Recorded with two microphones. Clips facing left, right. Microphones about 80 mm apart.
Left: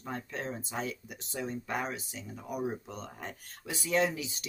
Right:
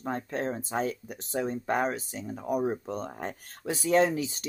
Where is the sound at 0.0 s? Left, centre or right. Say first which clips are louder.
Right 7 dB; right.